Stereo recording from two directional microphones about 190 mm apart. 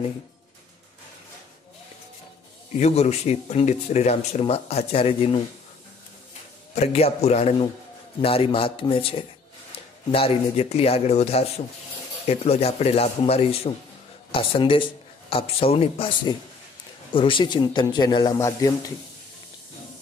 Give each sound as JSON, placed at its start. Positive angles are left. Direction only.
{"t": 2.8, "sound": "speech", "side_deg": 35}
{"t": 6.7, "sound": "speech", "side_deg": 35}